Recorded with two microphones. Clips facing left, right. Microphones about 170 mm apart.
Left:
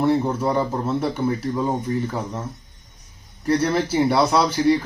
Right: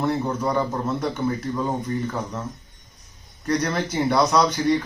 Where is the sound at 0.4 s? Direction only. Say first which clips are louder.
Left 2 dB; 10° left (ahead or behind).